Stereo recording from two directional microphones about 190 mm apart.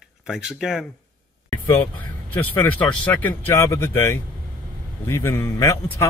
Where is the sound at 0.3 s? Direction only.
Centre (ahead or behind).